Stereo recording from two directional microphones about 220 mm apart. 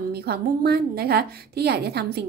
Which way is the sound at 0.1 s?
45° right (ahead or behind).